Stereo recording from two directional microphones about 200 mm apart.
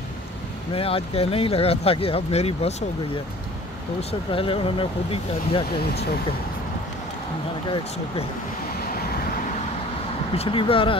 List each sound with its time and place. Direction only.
0.7 s speech: 30° left (ahead or behind)
4.1 s speech: 25° left (ahead or behind)
10.3 s speech: 30° left (ahead or behind)